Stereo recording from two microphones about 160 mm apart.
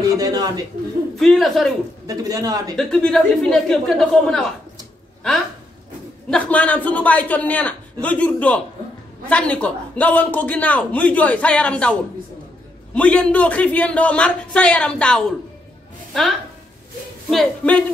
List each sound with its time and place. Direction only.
0.1 s a man's voice: 20° right (ahead or behind)
1.2 s speech: centre (ahead or behind)
2.0 s a man's voice: 20° right (ahead or behind)
2.7 s speech: 5° left (ahead or behind)
6.3 s a man's voice: 10° left (ahead or behind)
17.3 s speech: 5° left (ahead or behind)